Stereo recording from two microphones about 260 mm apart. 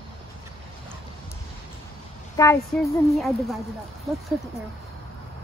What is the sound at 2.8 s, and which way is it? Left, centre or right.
Speech, centre.